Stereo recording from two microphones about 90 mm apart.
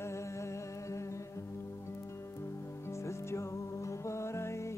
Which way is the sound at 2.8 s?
30° left (ahead or behind).